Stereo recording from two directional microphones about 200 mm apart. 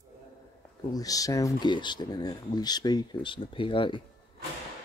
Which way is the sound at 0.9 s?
20° left (ahead or behind).